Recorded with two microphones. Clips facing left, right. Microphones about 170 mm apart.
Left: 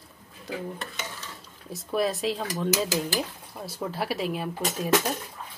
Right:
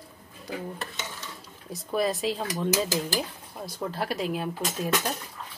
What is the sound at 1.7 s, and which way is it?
Speech, centre (ahead or behind).